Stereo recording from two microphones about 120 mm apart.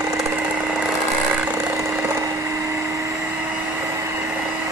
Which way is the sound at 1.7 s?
20° right (ahead or behind).